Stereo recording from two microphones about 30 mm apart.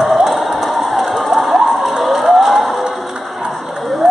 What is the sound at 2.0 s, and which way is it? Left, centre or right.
Music, centre.